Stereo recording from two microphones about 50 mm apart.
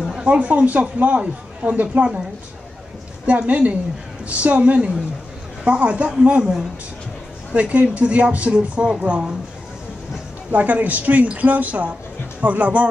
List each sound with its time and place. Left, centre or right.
0.1 s speech: right
3.3 s speech: right
7.5 s speech: right
10.5 s a woman's voice: right